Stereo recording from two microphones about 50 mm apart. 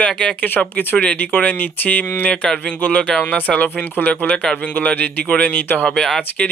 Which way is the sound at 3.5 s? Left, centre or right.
Centre.